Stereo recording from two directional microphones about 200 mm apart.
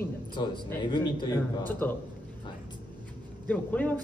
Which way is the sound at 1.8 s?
10° left (ahead or behind).